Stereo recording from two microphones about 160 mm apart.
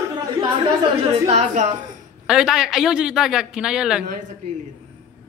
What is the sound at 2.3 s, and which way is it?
Speech, 5° right (ahead or behind).